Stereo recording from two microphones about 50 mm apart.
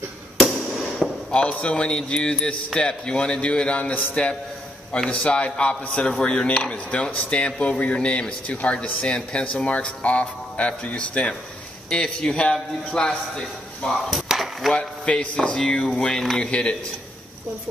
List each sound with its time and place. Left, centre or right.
0.4 s fireworks: centre
1.3 s speech: left
14.1 s chop: centre
14.8 s speech: left
16.3 s speech: left